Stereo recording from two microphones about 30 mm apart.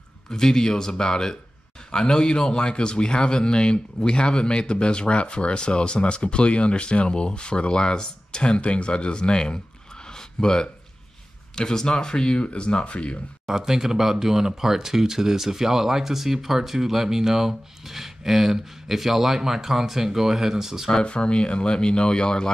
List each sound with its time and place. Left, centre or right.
0.3 s a man's voice: centre
8.5 s a man's voice: left
10.1 s a sound: left
11.5 s speech: left
12.9 s speech: left
13.5 s speech: centre
21.0 s speech: left